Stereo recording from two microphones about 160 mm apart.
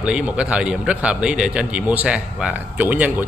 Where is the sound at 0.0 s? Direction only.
5° right (ahead or behind).